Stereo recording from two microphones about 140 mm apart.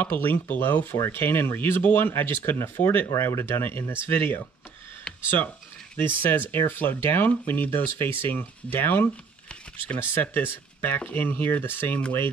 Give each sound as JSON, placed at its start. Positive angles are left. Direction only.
{"t": 0.0, "sound": "speech", "side_deg": 15}
{"t": 5.0, "sound": "a sound", "side_deg": 10}
{"t": 5.9, "sound": "speech", "side_deg": 15}